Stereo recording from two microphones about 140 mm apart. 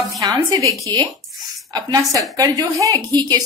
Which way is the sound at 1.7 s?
30° right (ahead or behind).